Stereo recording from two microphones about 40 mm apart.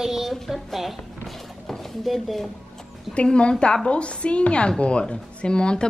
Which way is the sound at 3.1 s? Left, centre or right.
Left.